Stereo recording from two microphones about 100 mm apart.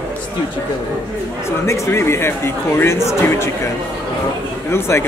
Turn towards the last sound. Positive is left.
turn(degrees=25)  # may be behind; listen again after turning